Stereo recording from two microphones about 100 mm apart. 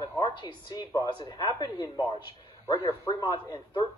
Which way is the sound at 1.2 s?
40° left (ahead or behind).